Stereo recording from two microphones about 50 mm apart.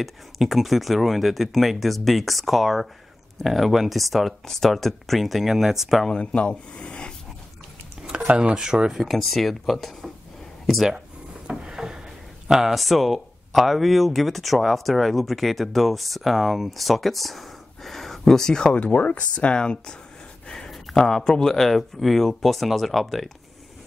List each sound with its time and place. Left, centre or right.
0.0 s speech: centre
6.0 s speech: left
8.3 s speech: centre
9.0 s speech: centre
11.4 s a sound: centre
12.4 s speech: centre
18.8 s speech: left
20.4 s a sound: centre
21.2 s speech: centre